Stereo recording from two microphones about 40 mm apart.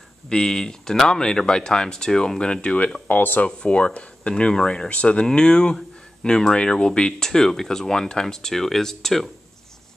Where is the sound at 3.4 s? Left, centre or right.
Left.